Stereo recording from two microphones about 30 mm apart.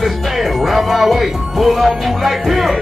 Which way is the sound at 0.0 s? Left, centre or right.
Centre.